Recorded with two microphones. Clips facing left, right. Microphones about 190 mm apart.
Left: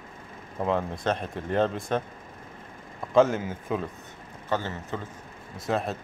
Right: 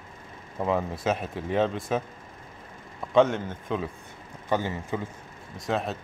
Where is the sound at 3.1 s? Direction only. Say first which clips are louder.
Even; centre (ahead or behind).